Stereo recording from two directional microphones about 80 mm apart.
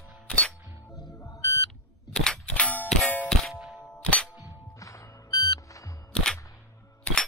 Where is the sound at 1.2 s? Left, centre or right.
Left.